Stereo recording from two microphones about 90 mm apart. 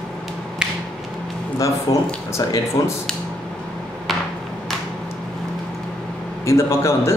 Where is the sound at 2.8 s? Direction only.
45° left (ahead or behind).